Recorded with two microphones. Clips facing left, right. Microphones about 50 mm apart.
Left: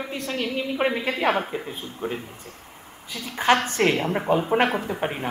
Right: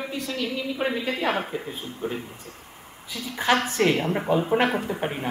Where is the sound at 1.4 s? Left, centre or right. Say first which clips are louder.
Left 1 dB; centre.